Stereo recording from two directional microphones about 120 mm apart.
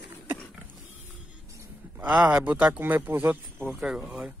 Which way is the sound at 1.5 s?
25° right (ahead or behind).